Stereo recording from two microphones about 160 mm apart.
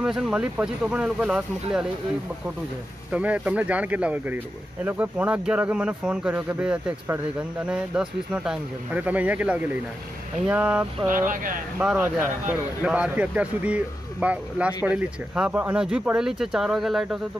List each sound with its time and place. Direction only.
0.0 s speech: 5° right (ahead or behind)
3.1 s speech: 10° right (ahead or behind)
11.1 s speech: 55° right (ahead or behind)
11.8 s speech: 10° right (ahead or behind)